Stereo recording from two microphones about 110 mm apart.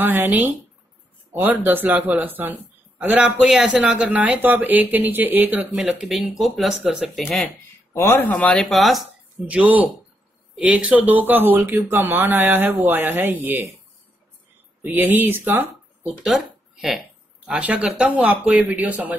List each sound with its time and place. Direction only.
0.0 s a man's voice: 20° right (ahead or behind); by 7.3 s centre (ahead or behind)
7.9 s speech: 20° left (ahead or behind)
8.6 s speech: centre (ahead or behind)
9.5 s a man's voice: 10° right (ahead or behind)
14.8 s a man's voice: 15° right (ahead or behind)